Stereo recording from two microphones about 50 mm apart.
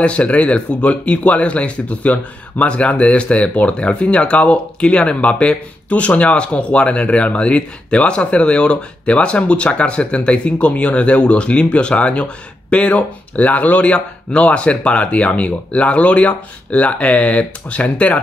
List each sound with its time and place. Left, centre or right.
0.0 s speech: left